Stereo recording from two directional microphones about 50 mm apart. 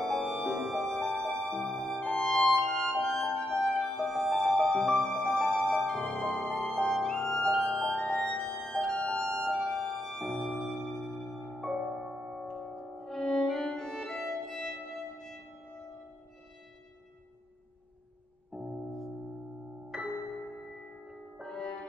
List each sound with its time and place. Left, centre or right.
0.0 s music: centre
8.9 s music: left
9.2 s music: centre
11.6 s music: centre
13.0 s violin: centre
18.5 s music: centre
19.9 s music: centre
21.4 s music: centre